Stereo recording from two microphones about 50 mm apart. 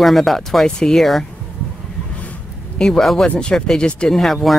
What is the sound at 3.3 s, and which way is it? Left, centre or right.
Speech, centre.